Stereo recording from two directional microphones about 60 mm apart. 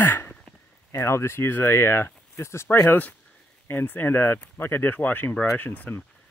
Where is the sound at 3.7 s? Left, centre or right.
Left.